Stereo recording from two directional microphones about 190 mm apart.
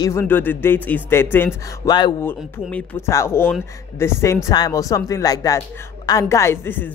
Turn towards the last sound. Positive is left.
turn(degrees=10)  # may be behind; listen again after turning